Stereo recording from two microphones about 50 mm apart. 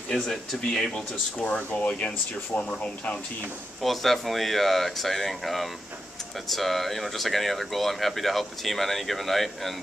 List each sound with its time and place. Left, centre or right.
0.2 s speech: centre
0.9 s speech: left
3.8 s speech: centre